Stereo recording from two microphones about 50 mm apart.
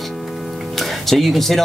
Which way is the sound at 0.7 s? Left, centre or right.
Centre.